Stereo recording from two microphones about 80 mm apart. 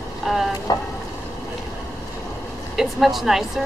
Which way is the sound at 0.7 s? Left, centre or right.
Left.